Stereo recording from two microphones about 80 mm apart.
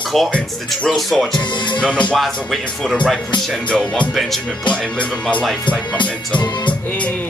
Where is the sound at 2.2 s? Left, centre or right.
Centre.